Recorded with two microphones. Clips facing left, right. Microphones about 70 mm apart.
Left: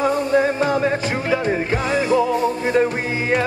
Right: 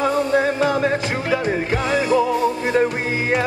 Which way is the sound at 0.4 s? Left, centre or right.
Left.